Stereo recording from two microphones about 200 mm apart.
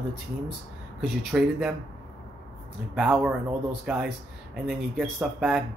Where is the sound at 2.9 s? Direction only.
5° right (ahead or behind).